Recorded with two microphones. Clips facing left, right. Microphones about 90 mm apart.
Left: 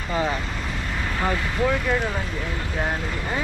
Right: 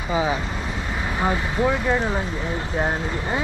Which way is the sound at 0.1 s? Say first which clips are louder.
Right 2 dB; 10° right (ahead or behind).